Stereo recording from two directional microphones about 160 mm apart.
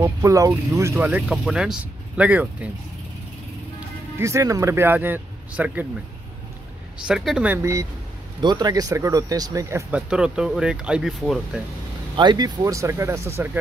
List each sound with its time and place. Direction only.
0.0 s speech: 20° right (ahead or behind)
1.3 s speech: centre (ahead or behind)
4.2 s speech: 20° right (ahead or behind)
7.1 s speech: 5° right (ahead or behind)
8.4 s speech: 25° right (ahead or behind); by 11.6 s centre (ahead or behind)
12.2 s speech: 25° right (ahead or behind)